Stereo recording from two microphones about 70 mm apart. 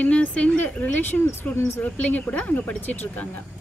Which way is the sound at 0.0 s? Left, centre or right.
Left.